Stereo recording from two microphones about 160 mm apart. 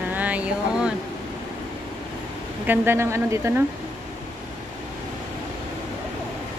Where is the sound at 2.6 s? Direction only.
15° right (ahead or behind).